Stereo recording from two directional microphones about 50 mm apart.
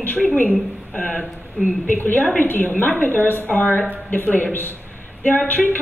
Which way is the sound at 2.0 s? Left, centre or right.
Left.